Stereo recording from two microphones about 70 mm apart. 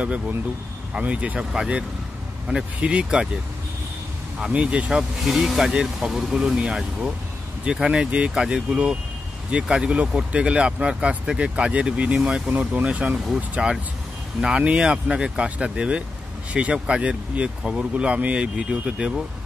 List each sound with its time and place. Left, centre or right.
0.9 s speech: centre
4.4 s speech: centre
5.2 s speech: centre
12.4 s speech: right
12.8 s speech: centre